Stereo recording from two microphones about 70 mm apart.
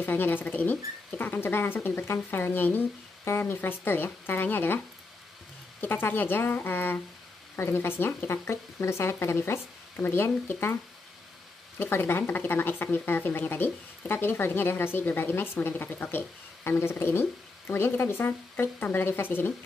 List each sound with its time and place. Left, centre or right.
0.0 s speech: left
11.8 s speech: left